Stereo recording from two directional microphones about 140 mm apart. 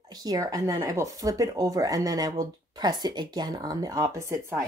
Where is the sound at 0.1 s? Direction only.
25° right (ahead or behind).